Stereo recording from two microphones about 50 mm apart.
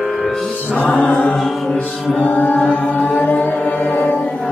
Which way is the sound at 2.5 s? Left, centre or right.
Left.